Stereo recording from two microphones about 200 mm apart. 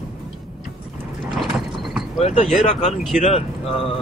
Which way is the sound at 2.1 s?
30° left (ahead or behind).